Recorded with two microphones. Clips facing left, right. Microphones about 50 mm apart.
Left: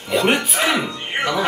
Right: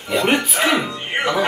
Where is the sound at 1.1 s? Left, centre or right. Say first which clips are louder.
Right 1 dB; centre.